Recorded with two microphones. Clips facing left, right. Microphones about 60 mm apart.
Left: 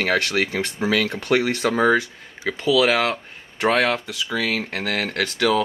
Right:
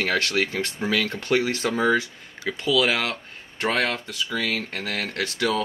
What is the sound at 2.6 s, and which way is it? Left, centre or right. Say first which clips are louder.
Speech: left 4 dB; centre.